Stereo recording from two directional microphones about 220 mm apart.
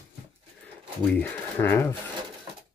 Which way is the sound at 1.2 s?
10° left (ahead or behind).